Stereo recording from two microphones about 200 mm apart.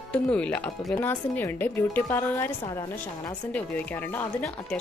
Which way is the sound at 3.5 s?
10° left (ahead or behind).